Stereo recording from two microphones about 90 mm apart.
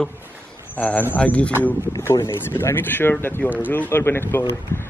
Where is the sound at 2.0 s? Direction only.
30° left (ahead or behind).